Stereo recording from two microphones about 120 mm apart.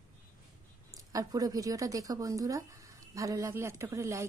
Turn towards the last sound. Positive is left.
turn(degrees=-25)  # may be behind; listen again after turning